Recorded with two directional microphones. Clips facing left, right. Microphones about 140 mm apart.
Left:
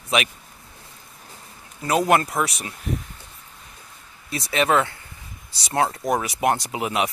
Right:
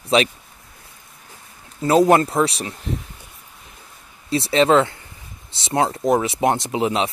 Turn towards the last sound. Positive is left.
turn(degrees=-25)  # may be behind; listen again after turning